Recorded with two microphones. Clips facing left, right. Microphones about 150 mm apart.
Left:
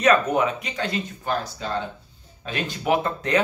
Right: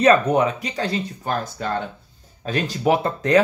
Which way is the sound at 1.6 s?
55° right (ahead or behind).